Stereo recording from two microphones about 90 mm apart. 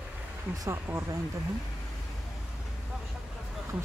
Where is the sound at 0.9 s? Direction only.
25° right (ahead or behind).